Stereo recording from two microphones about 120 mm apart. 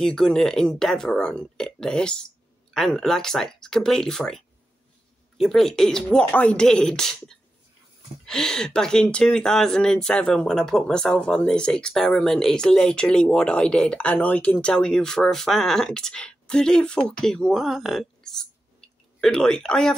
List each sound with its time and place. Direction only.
0.0 s speech: 5° left (ahead or behind)
5.4 s speech: centre (ahead or behind)